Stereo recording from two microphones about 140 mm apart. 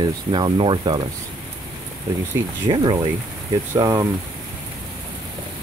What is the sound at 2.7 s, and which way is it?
Speech, 35° right (ahead or behind).